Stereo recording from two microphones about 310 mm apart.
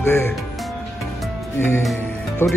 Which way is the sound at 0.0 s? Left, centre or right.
Centre.